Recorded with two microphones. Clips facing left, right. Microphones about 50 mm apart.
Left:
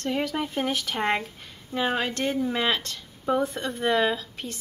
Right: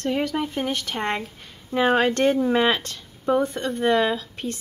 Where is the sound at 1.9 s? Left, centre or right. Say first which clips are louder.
Right 8 dB; right.